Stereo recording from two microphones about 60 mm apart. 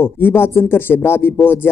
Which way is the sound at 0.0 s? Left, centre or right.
Left.